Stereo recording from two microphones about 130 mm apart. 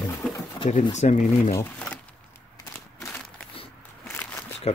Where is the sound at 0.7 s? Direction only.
65° left (ahead or behind).